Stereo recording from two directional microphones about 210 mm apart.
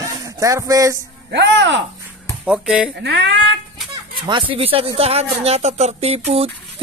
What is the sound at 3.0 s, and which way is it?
Speech, 55° right (ahead or behind).